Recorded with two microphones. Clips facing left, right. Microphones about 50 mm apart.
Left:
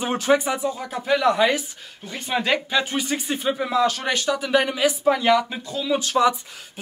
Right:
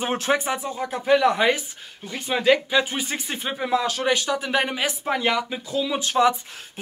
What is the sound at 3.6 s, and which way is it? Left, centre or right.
Speech, centre.